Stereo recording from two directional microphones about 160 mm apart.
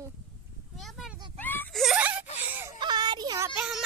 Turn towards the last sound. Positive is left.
turn(degrees=-5)  # may be behind; listen again after turning